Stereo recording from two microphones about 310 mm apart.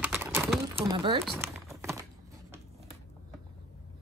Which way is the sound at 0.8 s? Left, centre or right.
Centre.